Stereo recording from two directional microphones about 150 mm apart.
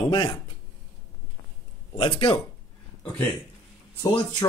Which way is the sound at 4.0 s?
35° left (ahead or behind).